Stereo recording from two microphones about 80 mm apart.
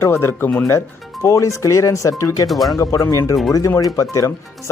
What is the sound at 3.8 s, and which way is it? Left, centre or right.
Speech, left.